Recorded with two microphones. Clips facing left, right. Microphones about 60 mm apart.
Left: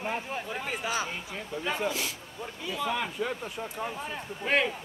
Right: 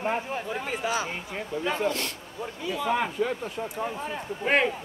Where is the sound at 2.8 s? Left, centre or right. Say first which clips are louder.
Right 6 dB; right.